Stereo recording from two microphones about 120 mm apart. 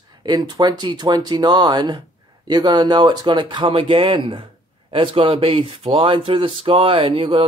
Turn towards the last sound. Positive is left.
turn(degrees=-45)  # may be behind; listen again after turning